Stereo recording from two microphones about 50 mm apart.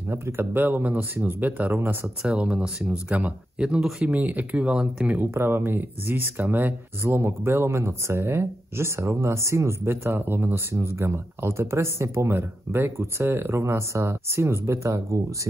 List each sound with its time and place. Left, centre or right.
0.1 s speech: right
2.2 s speech: centre
2.9 s speech: right
5.2 s speech: right